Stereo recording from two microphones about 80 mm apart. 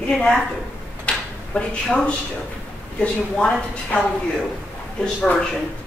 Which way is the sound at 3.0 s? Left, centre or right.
Centre.